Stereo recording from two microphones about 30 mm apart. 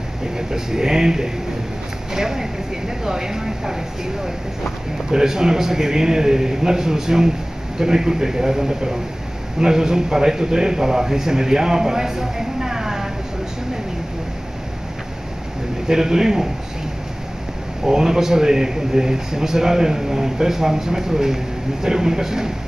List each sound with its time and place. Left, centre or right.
0.5 s a man's voice: right
5.1 s a man's voice: centre
15.9 s speech: centre
17.8 s a man's voice: centre